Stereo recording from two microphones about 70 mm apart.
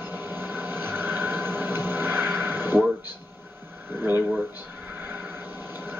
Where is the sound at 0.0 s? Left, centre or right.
Right.